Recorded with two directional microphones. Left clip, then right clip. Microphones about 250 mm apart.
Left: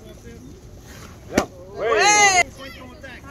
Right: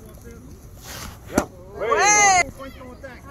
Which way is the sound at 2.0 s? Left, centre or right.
Left.